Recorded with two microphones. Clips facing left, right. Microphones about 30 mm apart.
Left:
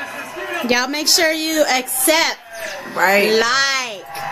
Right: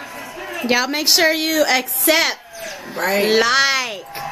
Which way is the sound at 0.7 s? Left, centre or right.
Centre.